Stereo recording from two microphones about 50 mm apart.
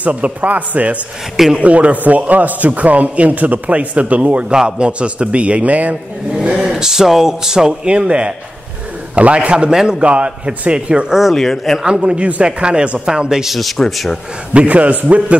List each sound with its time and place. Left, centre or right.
0.0 s a man's voice: right
4.5 s a man's voice: centre
6.5 s a man's voice: centre
11.3 s speech: centre
11.8 s a man's voice: centre
14.5 s a man's voice: right